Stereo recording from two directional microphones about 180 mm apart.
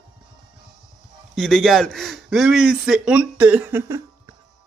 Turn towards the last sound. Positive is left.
turn(degrees=-15)  # may be behind; listen again after turning